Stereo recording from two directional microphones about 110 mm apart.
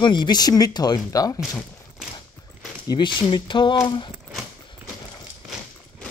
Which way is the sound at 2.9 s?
45° left (ahead or behind).